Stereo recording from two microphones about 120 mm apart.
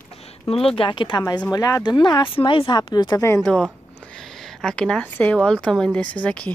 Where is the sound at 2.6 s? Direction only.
35° left (ahead or behind).